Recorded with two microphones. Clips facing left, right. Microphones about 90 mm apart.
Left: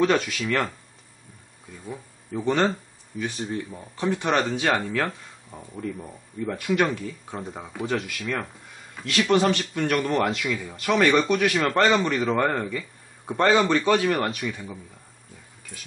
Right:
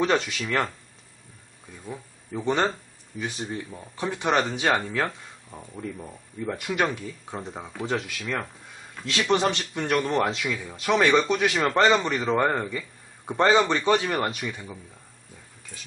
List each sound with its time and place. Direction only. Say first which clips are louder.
0.0 s speech: left 2 dB; 20° right (ahead or behind)
2.4 s speech: left 2 dB; 15° right (ahead or behind)
6.5 s speech: left 3 dB; 15° right (ahead or behind)
7.5 s speech: left 1 dB; centre (ahead or behind)
9.0 s speech: left 2 dB; 20° right (ahead or behind)
10.5 s speech: left 2 dB; 5° right (ahead or behind)
10.8 s speech: even; 15° right (ahead or behind)